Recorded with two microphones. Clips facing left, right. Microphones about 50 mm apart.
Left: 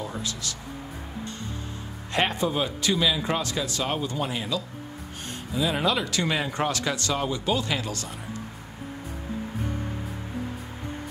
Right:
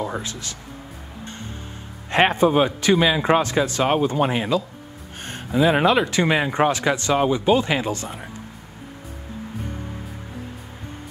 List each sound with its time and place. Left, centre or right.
0.0 s speech: right
2.0 s a man's voice: right